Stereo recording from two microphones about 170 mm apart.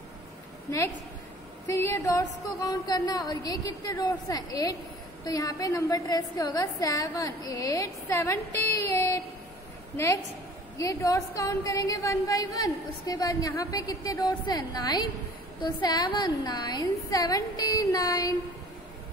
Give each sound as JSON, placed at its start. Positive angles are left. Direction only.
{"t": 1.7, "sound": "a woman's voice", "side_deg": 15}
{"t": 10.8, "sound": "a woman's voice", "side_deg": 20}